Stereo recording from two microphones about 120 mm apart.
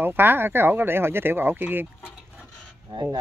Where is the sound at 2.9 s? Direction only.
40° right (ahead or behind).